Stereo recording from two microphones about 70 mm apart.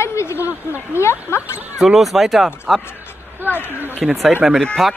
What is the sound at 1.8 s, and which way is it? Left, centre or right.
Speech, centre.